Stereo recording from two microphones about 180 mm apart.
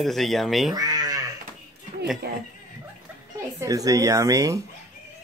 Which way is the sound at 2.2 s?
60° right (ahead or behind).